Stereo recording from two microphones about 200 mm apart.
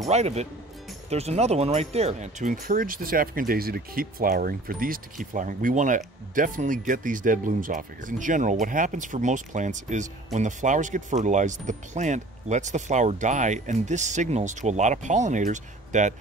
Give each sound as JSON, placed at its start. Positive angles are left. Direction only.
{"t": 0.1, "sound": "speech", "side_deg": -35}